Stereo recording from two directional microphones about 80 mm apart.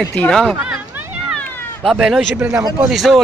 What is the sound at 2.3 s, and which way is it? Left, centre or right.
Speech, right.